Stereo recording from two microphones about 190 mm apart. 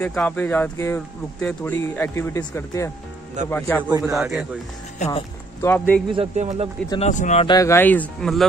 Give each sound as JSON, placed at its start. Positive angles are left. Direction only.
{"t": 0.0, "sound": "speech", "side_deg": 10}
{"t": 4.1, "sound": "a man's voice", "side_deg": 0}
{"t": 4.9, "sound": "speech", "side_deg": 35}
{"t": 5.6, "sound": "speech", "side_deg": 10}
{"t": 6.1, "sound": "a man's voice", "side_deg": -35}
{"t": 7.0, "sound": "speech", "side_deg": 40}
{"t": 7.4, "sound": "speech", "side_deg": 15}